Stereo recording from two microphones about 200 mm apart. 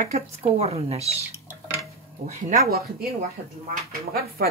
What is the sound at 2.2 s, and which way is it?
Speech, 45° right (ahead or behind).